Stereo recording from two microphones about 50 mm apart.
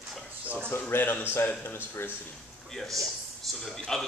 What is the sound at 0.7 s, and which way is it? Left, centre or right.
A man's voice, left.